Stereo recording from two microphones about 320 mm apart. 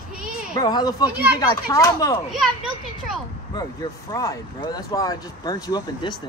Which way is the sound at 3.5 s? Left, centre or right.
Centre.